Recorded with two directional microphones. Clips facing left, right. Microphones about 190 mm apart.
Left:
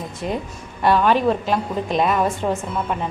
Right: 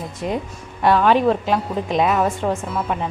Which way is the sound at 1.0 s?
15° right (ahead or behind).